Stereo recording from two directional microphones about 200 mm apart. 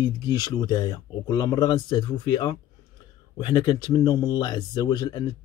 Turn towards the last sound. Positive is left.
turn(degrees=20)  # may be behind; listen again after turning